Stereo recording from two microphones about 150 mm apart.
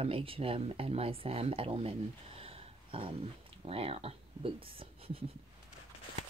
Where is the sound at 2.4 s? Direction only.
40° right (ahead or behind).